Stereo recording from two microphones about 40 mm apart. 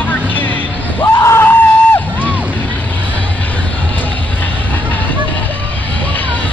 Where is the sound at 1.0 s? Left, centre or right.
Left.